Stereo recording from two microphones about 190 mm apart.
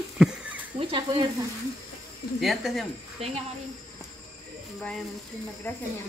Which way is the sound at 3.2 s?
30° right (ahead or behind).